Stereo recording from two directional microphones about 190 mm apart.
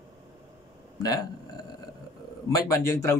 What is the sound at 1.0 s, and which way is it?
Speech, 20° left (ahead or behind).